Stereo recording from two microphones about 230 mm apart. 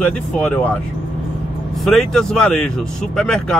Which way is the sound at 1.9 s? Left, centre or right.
Centre.